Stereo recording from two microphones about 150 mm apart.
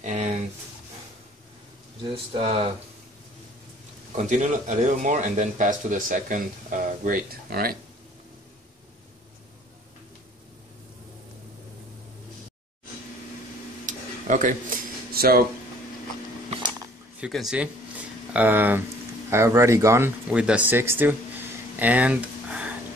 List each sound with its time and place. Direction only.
0.0 s a sound: 50° right (ahead or behind)
2.3 s speech: 35° right (ahead or behind)
4.1 s speech: 55° right (ahead or behind); by 7.7 s 90° right
13.8 s tick-tock: 60° right (ahead or behind)
15.1 s speech: 90° right
17.3 s speech: centre (ahead or behind); by 20.1 s 20° right (ahead or behind)
20.2 s speech: 10° right (ahead or behind)
21.7 s a sound: 10° right (ahead or behind)